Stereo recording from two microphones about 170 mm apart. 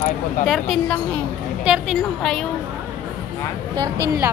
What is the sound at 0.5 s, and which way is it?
Speech, centre (ahead or behind).